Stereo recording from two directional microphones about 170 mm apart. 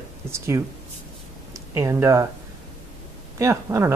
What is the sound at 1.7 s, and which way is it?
Speech, 15° right (ahead or behind).